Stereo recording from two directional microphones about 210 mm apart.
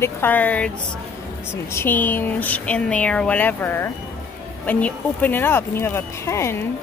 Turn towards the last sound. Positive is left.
turn(degrees=10)  # may be behind; listen again after turning